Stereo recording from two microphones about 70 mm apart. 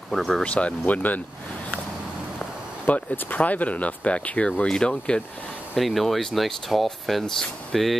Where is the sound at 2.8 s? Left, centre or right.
Left.